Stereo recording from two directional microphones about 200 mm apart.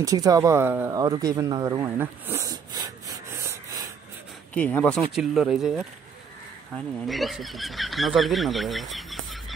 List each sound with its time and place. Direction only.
0.0 s speech: 15° right (ahead or behind)
4.6 s speech: 5° left (ahead or behind)
7.1 s speech: centre (ahead or behind)